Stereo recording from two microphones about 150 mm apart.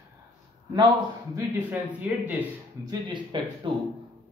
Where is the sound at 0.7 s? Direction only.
25° right (ahead or behind).